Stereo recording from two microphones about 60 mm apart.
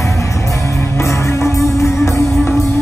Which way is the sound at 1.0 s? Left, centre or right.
Left.